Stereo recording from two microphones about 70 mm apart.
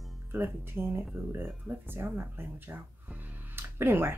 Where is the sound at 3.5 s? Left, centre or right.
Right.